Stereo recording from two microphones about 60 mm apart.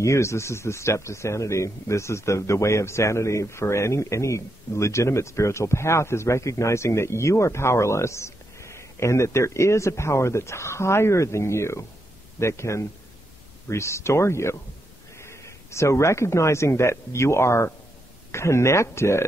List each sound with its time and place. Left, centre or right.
0.0 s speech: left